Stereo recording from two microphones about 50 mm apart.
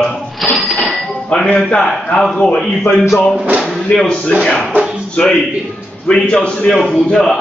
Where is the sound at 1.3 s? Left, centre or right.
Left.